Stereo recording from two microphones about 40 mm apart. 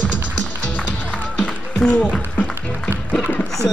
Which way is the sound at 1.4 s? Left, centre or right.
Centre.